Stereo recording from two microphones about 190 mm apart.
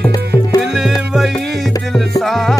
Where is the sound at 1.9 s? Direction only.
Centre (ahead or behind).